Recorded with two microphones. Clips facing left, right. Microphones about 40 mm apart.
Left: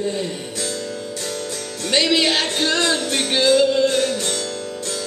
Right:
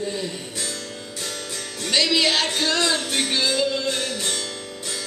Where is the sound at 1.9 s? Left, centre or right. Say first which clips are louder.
Left 2 dB; centre.